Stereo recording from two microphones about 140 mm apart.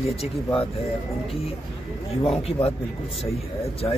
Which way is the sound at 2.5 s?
45° left (ahead or behind).